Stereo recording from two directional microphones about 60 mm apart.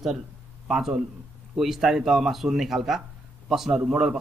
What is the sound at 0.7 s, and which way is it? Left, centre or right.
A man's voice, centre.